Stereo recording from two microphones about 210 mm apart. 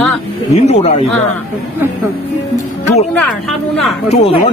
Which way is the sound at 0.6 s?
30° left (ahead or behind).